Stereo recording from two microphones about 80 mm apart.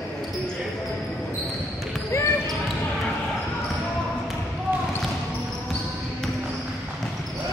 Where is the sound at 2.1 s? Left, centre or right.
Left.